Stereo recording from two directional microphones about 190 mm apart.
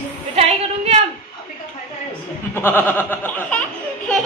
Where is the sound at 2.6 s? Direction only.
10° left (ahead or behind).